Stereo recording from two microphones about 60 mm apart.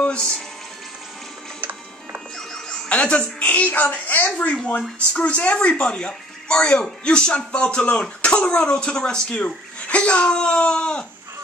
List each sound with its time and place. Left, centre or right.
2.9 s a woman's voice: centre